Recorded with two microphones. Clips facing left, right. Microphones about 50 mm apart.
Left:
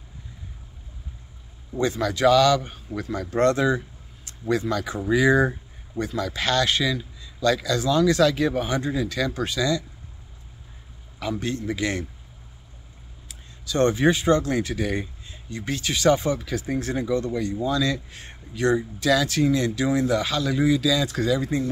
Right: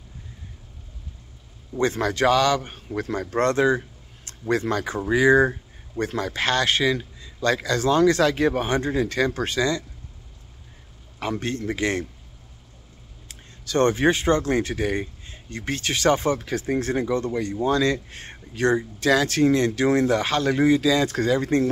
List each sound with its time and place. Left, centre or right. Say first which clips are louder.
1.8 s a man's voice: right 1 dB; right
3.0 s a man's voice: left 1 dB; right
4.2 s speech: right 1 dB; right
5.0 s speech: right 2 dB; right
5.9 s a man's voice: right 1 dB; right
11.1 s a man's voice: right 1 dB; right
13.3 s speech: right 3 dB; right
15.5 s a man's voice: right 1 dB; right